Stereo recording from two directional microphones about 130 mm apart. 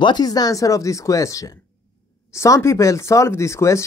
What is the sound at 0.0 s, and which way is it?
Speech, 30° left (ahead or behind).